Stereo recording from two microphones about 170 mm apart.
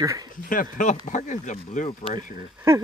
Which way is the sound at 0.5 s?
50° left (ahead or behind).